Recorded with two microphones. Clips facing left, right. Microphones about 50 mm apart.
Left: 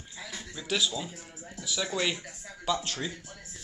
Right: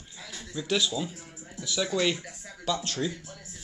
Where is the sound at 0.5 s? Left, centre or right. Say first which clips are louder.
Right 3 dB; centre.